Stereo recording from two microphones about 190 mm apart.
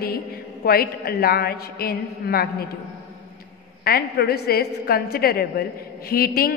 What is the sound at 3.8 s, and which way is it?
A woman's voice, 55° left (ahead or behind).